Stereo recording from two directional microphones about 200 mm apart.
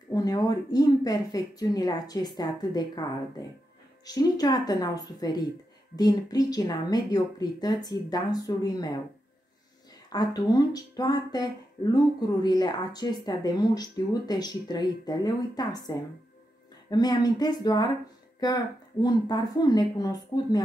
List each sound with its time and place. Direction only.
0.1 s speech: 20° left (ahead or behind)
10.0 s speech: 20° left (ahead or behind)